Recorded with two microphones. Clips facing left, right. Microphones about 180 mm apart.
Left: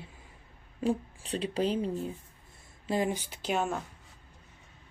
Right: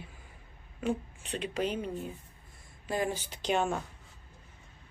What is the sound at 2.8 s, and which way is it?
Speech, 20° left (ahead or behind).